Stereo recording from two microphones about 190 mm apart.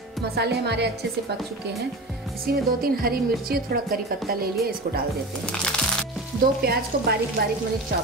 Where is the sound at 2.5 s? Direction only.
50° right (ahead or behind).